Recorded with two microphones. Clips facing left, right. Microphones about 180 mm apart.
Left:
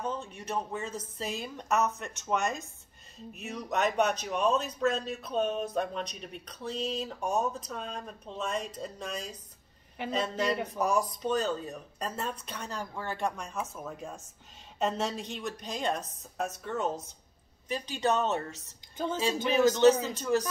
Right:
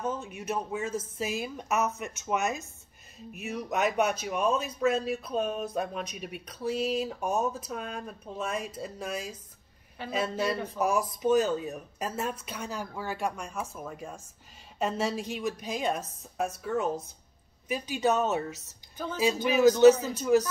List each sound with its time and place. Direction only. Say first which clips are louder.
0.0 s a man's voice: right 2 dB; 5° right (ahead or behind)
10.0 s speech: left 3 dB; 20° left (ahead or behind)
10.3 s a sound: even; 15° left (ahead or behind)
10.8 s speech: right 3 dB; 5° right (ahead or behind)
18.7 s a sound: left 3 dB; 20° left (ahead or behind)
19.4 s speech: right 4 dB; 5° right (ahead or behind)